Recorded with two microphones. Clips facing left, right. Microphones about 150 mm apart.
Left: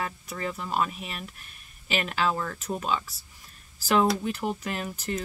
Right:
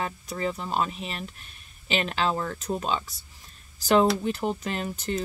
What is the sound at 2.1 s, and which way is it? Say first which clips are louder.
Speech: left 1 dB; 30° right (ahead or behind).